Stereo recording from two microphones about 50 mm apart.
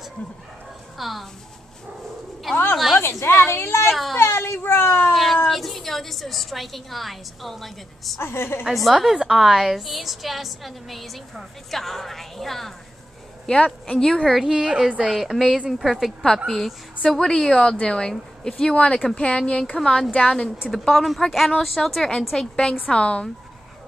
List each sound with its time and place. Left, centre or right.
0.9 s speech: centre
2.5 s a woman's voice: left
3.0 s a woman's voice: left
3.9 s a woman's voice: centre
4.2 s a sound: left
5.1 s cat: centre
5.5 s a woman's voice: centre
8.2 s a woman's voice: left
8.7 s a woman's voice: centre
13.8 s speech: centre
14.4 s a woman's voice: centre
20.9 s a woman's voice: centre
22.8 s a woman's voice: left